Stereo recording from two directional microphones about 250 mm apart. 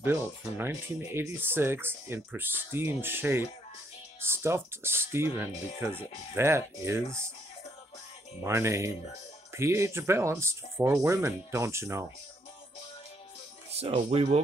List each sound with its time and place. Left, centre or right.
0.0 s speech: centre
8.4 s speech: centre
13.7 s speech: right